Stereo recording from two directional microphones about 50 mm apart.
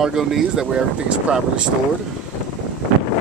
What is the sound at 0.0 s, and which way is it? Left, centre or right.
Speech, centre.